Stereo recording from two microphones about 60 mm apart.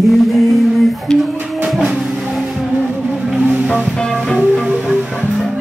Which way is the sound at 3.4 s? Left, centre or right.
Right.